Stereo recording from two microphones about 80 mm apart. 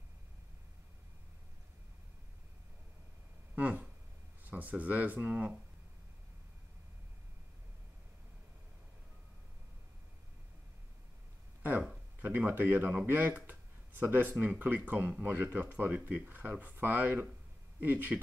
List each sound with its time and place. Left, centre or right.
3.5 s a sound: centre
4.5 s speech: centre
12.2 s speech: right